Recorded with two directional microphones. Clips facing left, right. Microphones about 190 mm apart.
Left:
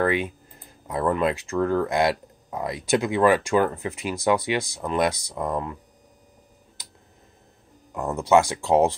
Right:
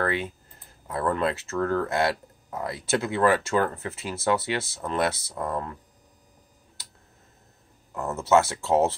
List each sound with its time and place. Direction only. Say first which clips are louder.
0.0 s speech: left 4 dB; 15° left (ahead or behind)
6.8 s tick: left 2 dB; 15° left (ahead or behind)
7.9 s speech: left 2 dB; 15° left (ahead or behind)